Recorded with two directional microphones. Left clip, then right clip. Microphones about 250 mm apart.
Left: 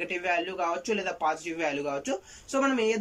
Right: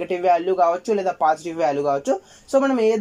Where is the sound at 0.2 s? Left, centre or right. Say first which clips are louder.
Right 13 dB; right.